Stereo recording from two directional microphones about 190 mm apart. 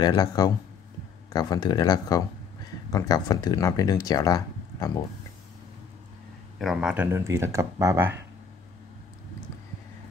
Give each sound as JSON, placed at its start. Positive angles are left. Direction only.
{"t": 0.0, "sound": "speech", "side_deg": 20}
{"t": 6.6, "sound": "speech", "side_deg": 0}